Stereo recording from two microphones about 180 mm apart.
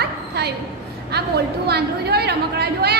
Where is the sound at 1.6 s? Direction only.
65° right (ahead or behind).